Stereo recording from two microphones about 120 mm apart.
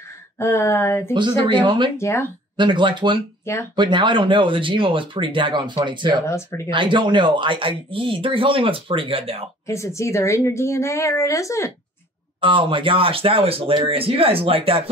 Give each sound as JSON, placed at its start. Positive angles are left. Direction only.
{"t": 0.4, "sound": "speech", "side_deg": 20}
{"t": 1.1, "sound": "speech", "side_deg": -40}
{"t": 2.0, "sound": "speech", "side_deg": 20}
{"t": 2.5, "sound": "speech", "side_deg": -40}
{"t": 6.2, "sound": "speech", "side_deg": 25}
{"t": 6.7, "sound": "speech", "side_deg": -40}
{"t": 9.7, "sound": "speech", "side_deg": 25}
{"t": 12.4, "sound": "speech", "side_deg": -45}